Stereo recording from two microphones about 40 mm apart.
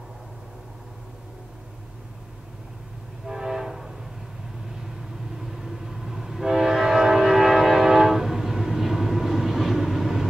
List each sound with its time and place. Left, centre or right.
3.3 s train: centre
5.4 s train: centre